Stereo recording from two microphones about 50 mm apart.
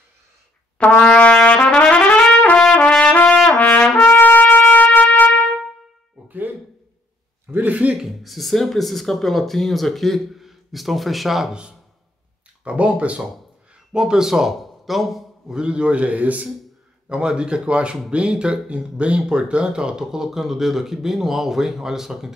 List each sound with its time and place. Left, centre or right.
0.8 s trumpet: left
2.6 s trumpet: centre
3.4 s trumpet: left
4.1 s trumpet: left
6.2 s music: right
7.5 s a man's voice: right
8.1 s speech: centre
12.6 s a man's voice: right
13.9 s a man's voice: centre
15.5 s a man's voice: centre
17.1 s a man's voice: centre